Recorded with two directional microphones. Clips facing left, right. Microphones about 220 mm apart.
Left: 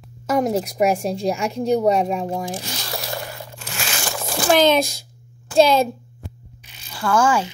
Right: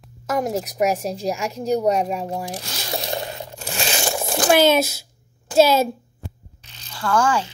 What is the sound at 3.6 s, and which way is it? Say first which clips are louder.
Crumpling: right 5 dB; 25° right (ahead or behind).